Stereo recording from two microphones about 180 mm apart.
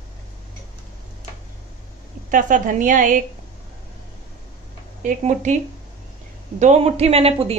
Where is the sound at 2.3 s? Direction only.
50° right (ahead or behind).